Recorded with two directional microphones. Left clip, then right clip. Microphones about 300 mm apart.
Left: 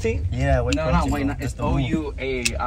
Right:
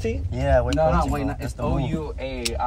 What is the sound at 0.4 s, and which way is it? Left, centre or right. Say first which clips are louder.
Speech: right 3 dB; right.